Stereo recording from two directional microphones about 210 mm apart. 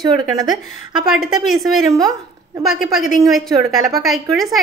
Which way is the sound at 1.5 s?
Centre (ahead or behind).